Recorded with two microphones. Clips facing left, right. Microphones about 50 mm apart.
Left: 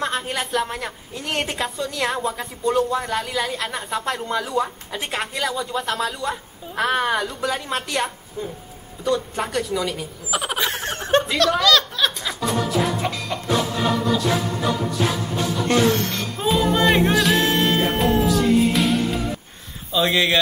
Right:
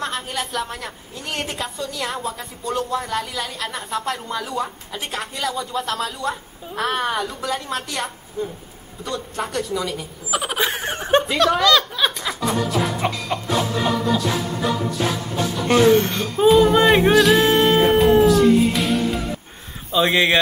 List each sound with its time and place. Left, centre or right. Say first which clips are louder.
0.0 s a woman's voice: left 2 dB; centre
10.6 s snicker: right 2 dB; centre
12.4 s music: even; centre
13.0 s music: right 2 dB; centre
13.5 s music: even; centre
15.9 s speech: right 6 dB; centre
16.4 s music: right 5 dB; centre
19.9 s speech: right 2 dB; right